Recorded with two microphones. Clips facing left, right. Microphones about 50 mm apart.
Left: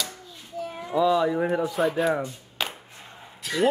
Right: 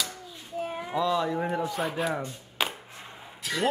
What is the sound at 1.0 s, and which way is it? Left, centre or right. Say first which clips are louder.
Speech: left 5 dB; centre.